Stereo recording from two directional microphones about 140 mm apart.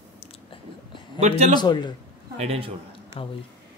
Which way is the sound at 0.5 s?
35° left (ahead or behind).